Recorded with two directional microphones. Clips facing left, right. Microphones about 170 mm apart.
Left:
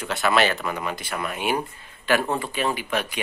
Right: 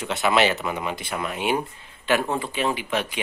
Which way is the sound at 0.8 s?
20° right (ahead or behind).